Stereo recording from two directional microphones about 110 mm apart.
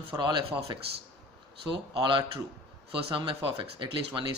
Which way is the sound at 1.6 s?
50° right (ahead or behind).